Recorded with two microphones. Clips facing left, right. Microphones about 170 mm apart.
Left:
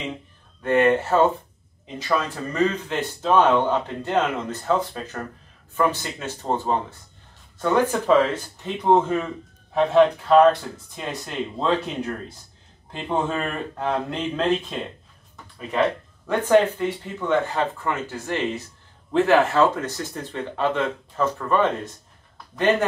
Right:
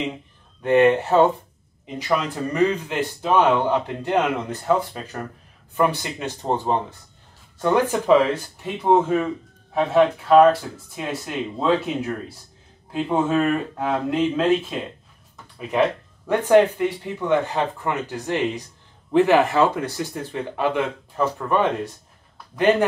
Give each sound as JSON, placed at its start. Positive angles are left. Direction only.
{"t": 0.6, "sound": "a man's voice", "side_deg": -15}
{"t": 16.3, "sound": "a man's voice", "side_deg": -15}